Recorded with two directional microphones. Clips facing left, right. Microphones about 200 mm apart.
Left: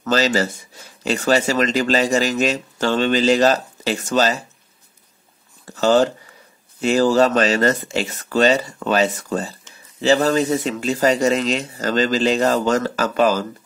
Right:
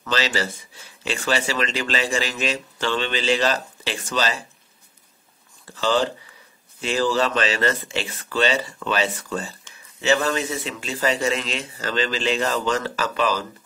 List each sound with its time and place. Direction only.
0.0 s speech: 45° left (ahead or behind)
5.8 s speech: 45° left (ahead or behind)